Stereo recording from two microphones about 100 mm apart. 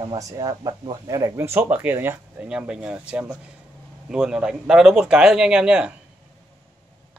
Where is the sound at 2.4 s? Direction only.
10° right (ahead or behind).